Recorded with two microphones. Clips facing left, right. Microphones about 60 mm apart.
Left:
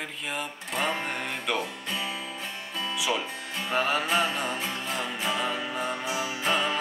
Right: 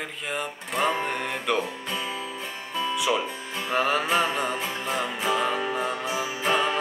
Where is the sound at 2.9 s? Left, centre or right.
Centre.